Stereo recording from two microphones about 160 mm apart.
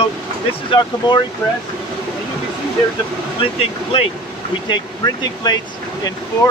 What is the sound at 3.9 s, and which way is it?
Speech, 35° left (ahead or behind).